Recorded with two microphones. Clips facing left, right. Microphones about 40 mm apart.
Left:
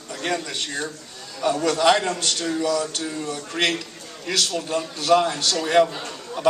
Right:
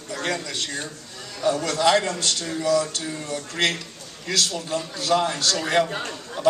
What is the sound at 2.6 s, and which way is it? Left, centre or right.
Speech, left.